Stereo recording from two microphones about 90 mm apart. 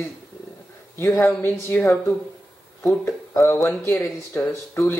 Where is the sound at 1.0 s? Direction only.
25° left (ahead or behind).